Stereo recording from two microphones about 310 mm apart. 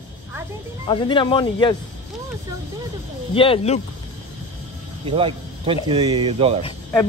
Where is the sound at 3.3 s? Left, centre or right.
Centre.